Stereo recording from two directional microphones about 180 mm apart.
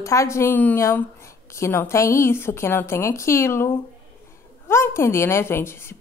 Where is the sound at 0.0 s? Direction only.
15° left (ahead or behind).